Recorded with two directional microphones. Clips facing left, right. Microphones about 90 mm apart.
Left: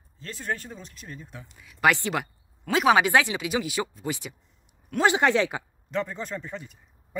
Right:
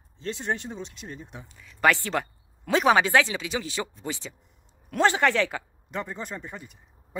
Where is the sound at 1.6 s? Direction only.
10° left (ahead or behind).